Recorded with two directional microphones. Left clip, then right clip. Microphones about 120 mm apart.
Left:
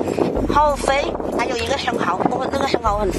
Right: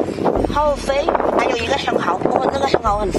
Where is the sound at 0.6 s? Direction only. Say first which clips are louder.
Left 1 dB; 40° left (ahead or behind).